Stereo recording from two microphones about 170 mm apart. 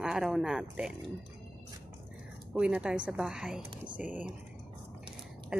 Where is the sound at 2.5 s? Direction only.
5° right (ahead or behind).